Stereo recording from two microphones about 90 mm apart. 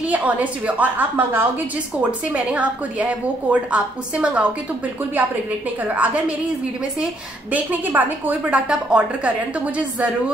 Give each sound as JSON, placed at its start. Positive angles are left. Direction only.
{"t": 0.1, "sound": "a woman's voice", "side_deg": -15}
{"t": 2.0, "sound": "a woman's voice", "side_deg": -10}
{"t": 5.9, "sound": "a woman's voice", "side_deg": -15}
{"t": 7.5, "sound": "a woman's voice", "side_deg": -20}